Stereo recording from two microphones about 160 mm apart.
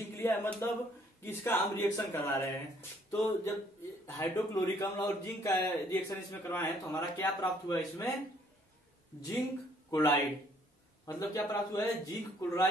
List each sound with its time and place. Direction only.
0.1 s a sound: 15° left (ahead or behind)
1.2 s a man's voice: 15° left (ahead or behind)
9.8 s a man's voice: 15° left (ahead or behind)